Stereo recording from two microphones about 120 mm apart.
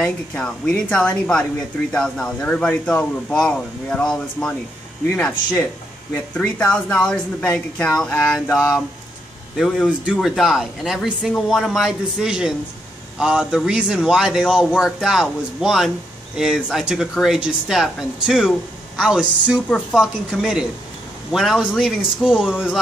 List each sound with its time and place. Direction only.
0.0 s speech: 10° left (ahead or behind)
5.1 s speech: 15° left (ahead or behind)
8.5 s speech: 25° left (ahead or behind)
9.6 s speech: 5° left (ahead or behind)